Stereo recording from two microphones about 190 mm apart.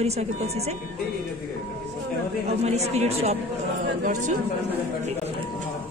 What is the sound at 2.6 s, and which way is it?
Speech, 35° right (ahead or behind).